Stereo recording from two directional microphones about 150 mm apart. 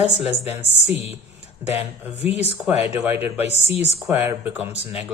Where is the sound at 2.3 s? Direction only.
45° left (ahead or behind).